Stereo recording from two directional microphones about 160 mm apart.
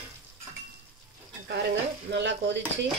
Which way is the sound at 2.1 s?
90° right.